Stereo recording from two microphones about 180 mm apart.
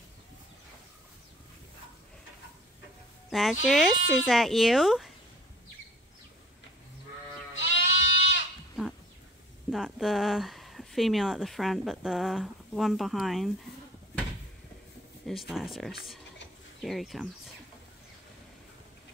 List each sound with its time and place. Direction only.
3.3 s speech: centre (ahead or behind)
7.5 s goat: 90° left
9.7 s speech: centre (ahead or behind)
15.2 s speech: centre (ahead or behind)